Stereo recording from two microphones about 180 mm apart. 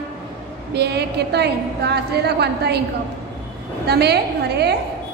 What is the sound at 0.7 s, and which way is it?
A woman's voice, 65° right (ahead or behind).